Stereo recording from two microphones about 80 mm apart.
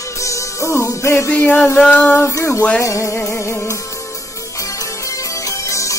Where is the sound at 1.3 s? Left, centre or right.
Left.